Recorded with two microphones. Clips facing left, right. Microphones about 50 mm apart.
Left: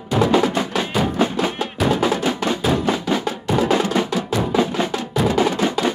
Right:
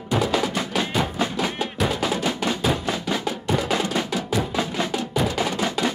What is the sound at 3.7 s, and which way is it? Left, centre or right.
Music, left.